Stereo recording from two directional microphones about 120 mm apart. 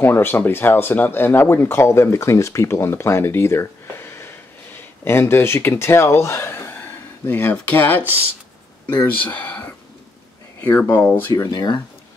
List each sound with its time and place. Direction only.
0.0 s speech: 20° left (ahead or behind); by 11.8 s 35° left (ahead or behind)